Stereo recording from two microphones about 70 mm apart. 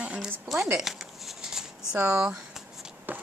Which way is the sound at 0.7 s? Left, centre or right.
Centre.